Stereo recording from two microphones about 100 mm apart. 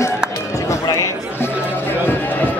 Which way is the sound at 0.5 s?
35° left (ahead or behind).